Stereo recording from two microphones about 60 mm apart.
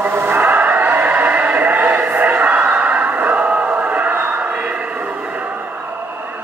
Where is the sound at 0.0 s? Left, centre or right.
Right.